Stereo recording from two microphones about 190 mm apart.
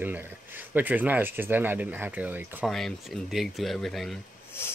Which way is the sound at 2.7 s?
Centre (ahead or behind).